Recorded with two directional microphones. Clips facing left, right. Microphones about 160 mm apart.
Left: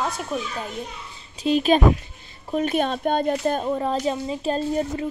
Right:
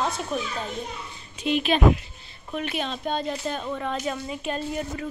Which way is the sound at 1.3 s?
35° left (ahead or behind).